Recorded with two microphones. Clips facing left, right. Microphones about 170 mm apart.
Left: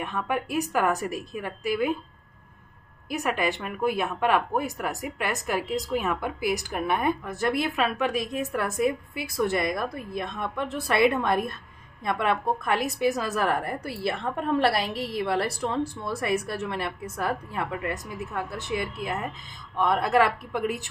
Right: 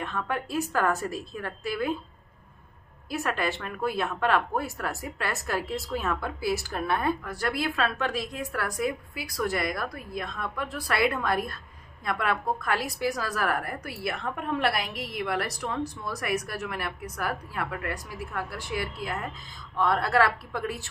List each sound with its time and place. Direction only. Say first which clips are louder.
0.0 s speech: left 2 dB; 15° left (ahead or behind)
3.1 s a woman's voice: left 2 dB; 15° left (ahead or behind)